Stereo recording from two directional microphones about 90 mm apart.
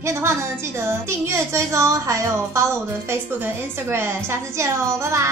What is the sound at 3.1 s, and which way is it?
A woman's voice, 25° right (ahead or behind).